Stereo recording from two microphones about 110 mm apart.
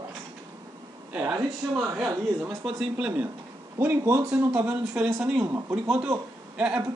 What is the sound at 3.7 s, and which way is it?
Speech, 25° right (ahead or behind).